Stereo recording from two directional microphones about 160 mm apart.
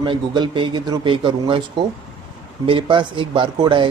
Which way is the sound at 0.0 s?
30° right (ahead or behind).